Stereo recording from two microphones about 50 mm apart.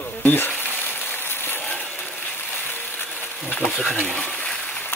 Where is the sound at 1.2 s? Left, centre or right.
Left.